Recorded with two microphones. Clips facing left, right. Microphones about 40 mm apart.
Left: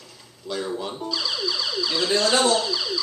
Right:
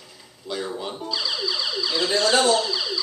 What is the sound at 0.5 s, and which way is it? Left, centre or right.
Music, centre.